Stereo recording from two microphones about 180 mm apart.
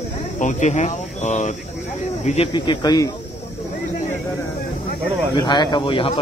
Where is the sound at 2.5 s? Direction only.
25° left (ahead or behind).